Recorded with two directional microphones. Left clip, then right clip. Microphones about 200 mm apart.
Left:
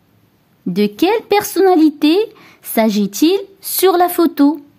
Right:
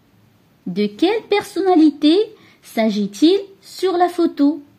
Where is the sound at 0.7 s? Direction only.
35° left (ahead or behind).